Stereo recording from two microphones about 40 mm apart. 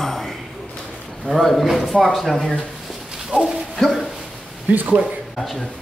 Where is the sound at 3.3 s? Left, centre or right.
Centre.